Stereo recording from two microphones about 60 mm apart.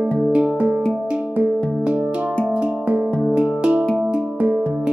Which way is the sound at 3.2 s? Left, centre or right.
Centre.